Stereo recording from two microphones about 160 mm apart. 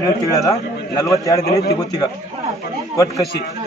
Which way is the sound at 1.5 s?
75° left (ahead or behind).